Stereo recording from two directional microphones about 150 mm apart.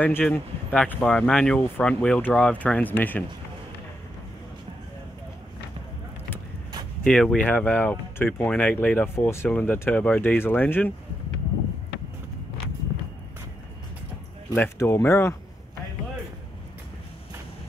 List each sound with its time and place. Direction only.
0.0 s speech: 10° left (ahead or behind)
7.1 s speech: 5° left (ahead or behind)
14.5 s speech: 15° left (ahead or behind)